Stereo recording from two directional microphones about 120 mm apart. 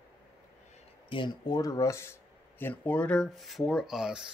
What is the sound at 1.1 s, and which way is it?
Speech, 40° left (ahead or behind).